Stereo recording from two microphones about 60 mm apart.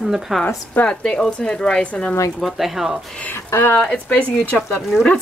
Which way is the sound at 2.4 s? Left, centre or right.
Centre.